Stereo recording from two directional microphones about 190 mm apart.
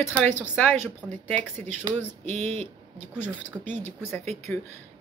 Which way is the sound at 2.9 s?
10° left (ahead or behind).